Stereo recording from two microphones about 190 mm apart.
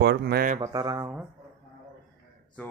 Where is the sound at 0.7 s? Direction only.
20° right (ahead or behind).